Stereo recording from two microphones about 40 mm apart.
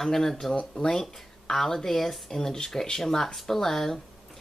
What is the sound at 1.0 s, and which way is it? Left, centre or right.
Speech, centre.